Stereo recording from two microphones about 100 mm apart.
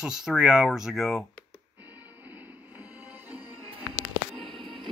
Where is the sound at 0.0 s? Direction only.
5° right (ahead or behind).